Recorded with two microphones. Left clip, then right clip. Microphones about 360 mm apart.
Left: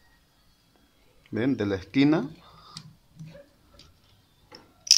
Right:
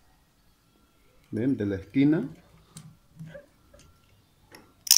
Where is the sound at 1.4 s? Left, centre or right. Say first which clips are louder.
Left 1 dB; left.